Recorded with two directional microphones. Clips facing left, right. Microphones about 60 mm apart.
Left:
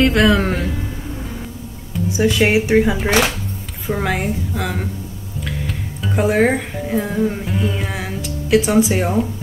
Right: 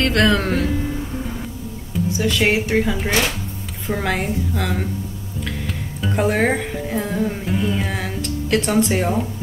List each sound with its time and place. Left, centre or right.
0.0 s a woman's voice: centre
2.1 s a woman's voice: centre
3.8 s a woman's voice: centre